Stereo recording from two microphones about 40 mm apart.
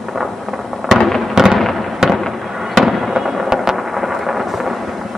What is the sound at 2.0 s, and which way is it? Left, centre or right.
Fireworks, centre.